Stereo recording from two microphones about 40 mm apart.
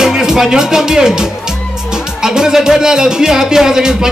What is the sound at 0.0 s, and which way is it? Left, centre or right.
Speech, centre.